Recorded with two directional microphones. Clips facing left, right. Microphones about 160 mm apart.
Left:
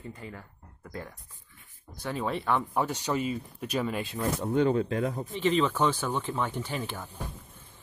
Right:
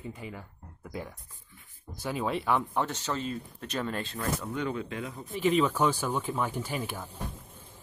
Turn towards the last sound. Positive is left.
turn(degrees=-10)  # may be behind; listen again after turning